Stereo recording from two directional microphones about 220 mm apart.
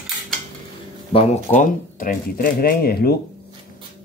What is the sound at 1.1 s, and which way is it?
Speech, 30° left (ahead or behind).